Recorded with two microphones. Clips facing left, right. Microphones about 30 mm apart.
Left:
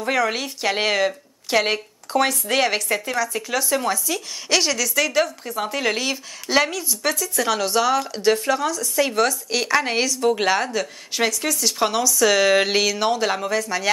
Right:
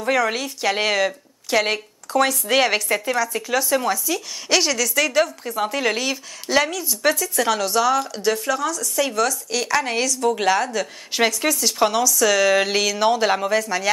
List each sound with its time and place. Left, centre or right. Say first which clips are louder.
0.0 s a woman's voice: right 1 dB; centre
6.9 s a woman's voice: right 3 dB; centre
11.1 s a woman's voice: right 2 dB; centre